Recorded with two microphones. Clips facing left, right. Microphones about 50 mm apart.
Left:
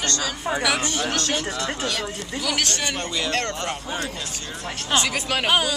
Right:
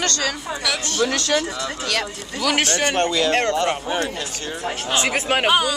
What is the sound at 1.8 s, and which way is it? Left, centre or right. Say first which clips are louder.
Speech: right 2 dB; right.